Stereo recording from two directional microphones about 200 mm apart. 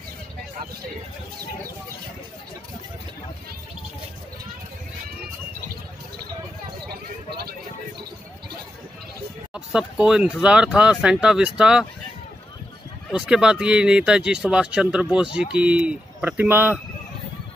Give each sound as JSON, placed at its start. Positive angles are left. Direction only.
{"t": 6.9, "sound": "a sound", "side_deg": -50}
{"t": 9.5, "sound": "speech", "side_deg": -5}
{"t": 13.1, "sound": "speech", "side_deg": -5}